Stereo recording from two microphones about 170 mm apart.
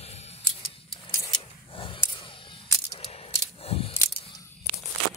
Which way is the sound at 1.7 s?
30° left (ahead or behind).